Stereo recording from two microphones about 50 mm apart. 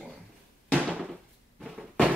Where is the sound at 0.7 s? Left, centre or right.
Right.